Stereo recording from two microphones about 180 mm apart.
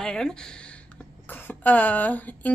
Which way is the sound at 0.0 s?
5° left (ahead or behind).